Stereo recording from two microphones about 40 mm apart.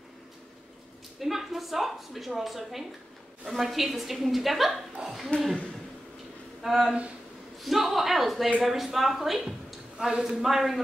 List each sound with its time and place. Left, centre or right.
1.2 s a woman's voice: centre
6.6 s a woman's voice: centre
9.9 s speech: right
10.4 s a man's voice: centre